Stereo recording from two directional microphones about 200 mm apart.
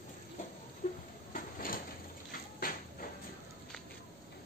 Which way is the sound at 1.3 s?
45° left (ahead or behind).